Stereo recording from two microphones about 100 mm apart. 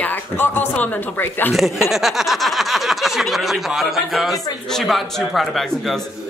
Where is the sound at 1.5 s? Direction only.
Centre (ahead or behind).